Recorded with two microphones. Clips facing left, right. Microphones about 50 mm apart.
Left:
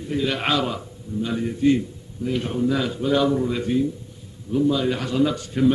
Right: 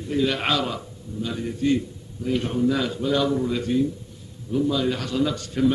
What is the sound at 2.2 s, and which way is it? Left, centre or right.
A man's voice, centre.